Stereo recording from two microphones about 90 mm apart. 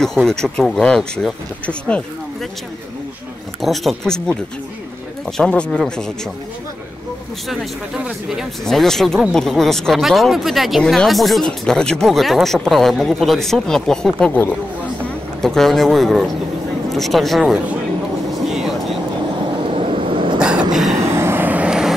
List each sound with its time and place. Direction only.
0.0 s speech: 5° left (ahead or behind)
3.6 s speech: centre (ahead or behind)
8.6 s speech: 5° left (ahead or behind)
15.4 s speech: 5° left (ahead or behind)
18.3 s vehicle: 5° right (ahead or behind)
19.3 s vehicle: 65° right (ahead or behind)
20.3 s train: 10° right (ahead or behind)
21.0 s vehicle: 30° right (ahead or behind); by 21.9 s 10° right (ahead or behind)